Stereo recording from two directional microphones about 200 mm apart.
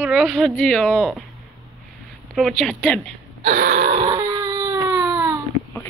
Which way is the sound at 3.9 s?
20° right (ahead or behind).